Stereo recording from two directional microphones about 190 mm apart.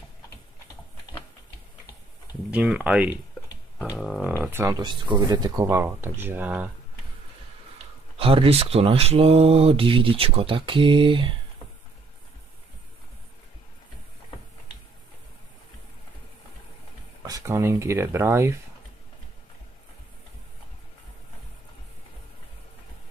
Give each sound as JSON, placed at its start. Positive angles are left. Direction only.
{"t": 2.5, "sound": "speech", "side_deg": -5}
{"t": 4.4, "sound": "speech", "side_deg": -10}
{"t": 8.2, "sound": "speech", "side_deg": -30}
{"t": 17.2, "sound": "speech", "side_deg": -20}